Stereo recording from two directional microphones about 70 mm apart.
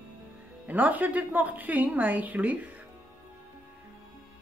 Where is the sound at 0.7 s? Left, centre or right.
Right.